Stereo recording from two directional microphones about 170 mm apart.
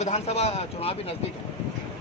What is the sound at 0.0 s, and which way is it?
Speech, 40° left (ahead or behind).